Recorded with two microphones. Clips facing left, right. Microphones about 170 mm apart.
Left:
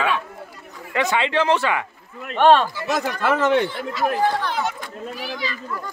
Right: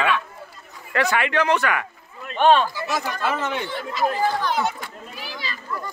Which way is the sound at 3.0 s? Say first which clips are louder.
Left 5 dB; 70° left (ahead or behind).